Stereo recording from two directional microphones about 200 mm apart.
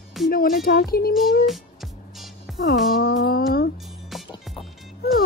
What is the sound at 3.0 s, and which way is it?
Speech, 50° left (ahead or behind).